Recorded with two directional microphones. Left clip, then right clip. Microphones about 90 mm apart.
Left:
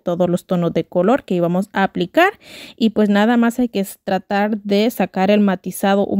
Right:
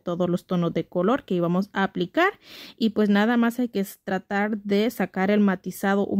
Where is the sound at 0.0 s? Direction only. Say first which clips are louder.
Left 8 dB; 35° left (ahead or behind).